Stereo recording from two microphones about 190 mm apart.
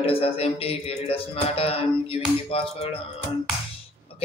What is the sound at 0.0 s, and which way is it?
A man's voice, 30° left (ahead or behind).